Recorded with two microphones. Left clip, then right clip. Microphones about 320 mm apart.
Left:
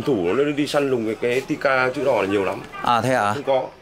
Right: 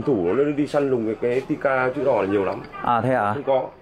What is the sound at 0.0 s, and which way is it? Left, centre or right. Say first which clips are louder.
Speech: even; right.